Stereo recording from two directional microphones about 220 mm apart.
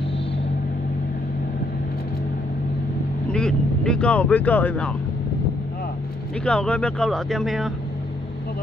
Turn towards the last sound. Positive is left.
turn(degrees=0)  # may be behind; listen again after turning